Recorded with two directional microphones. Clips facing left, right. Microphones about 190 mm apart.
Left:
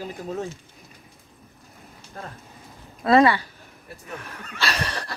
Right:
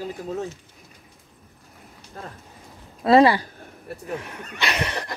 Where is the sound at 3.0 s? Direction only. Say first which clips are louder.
Right 2 dB; 30° right (ahead or behind).